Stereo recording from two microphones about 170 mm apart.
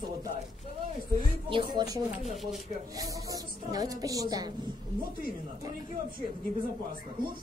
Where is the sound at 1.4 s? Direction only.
25° right (ahead or behind).